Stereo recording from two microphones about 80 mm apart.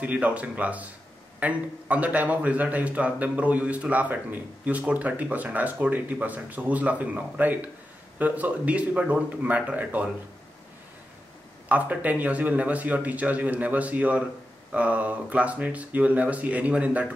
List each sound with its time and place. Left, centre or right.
0.0 s a man's voice: centre
11.7 s a man's voice: centre